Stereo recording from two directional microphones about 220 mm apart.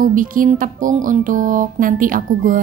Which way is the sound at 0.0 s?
40° right (ahead or behind).